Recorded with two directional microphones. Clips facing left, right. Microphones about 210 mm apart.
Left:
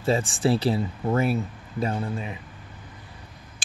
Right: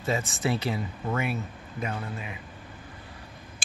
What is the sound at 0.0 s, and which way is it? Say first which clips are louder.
Speech: left 5 dB; 30° left (ahead or behind).